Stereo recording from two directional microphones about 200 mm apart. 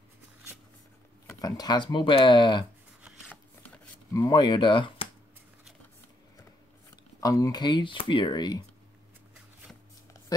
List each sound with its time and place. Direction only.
1.3 s speech: 20° left (ahead or behind)
3.3 s filing: 5° left (ahead or behind)
4.1 s speech: 20° left (ahead or behind)
7.2 s speech: 15° left (ahead or behind)